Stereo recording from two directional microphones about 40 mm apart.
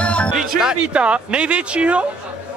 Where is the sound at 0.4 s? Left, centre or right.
Centre.